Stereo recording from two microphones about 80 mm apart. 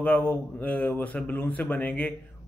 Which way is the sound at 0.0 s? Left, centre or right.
Centre.